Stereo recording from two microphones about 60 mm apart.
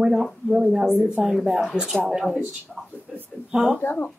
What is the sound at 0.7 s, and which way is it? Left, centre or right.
Speech, centre.